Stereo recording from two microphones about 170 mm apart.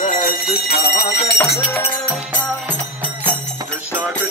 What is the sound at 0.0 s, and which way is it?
Bell, 55° left (ahead or behind).